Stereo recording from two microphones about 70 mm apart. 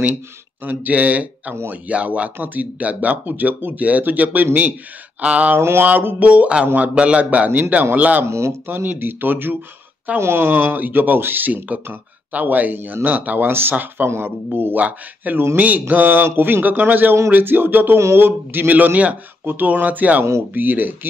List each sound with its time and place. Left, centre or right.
0.7 s speech: right
1.5 s speech: right
1.9 s speech: centre
5.6 s speech: right
5.9 s speech: right
8.3 s speech: right
8.6 s speech: right